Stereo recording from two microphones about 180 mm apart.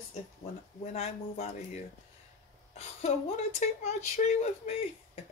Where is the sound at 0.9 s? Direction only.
35° left (ahead or behind).